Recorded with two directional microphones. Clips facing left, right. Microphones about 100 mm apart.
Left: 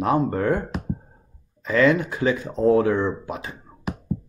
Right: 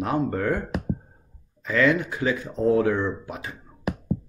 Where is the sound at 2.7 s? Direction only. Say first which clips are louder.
Left 3 dB; 40° left (ahead or behind).